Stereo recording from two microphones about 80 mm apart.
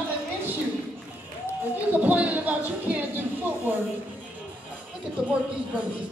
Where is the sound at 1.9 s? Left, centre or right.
Centre.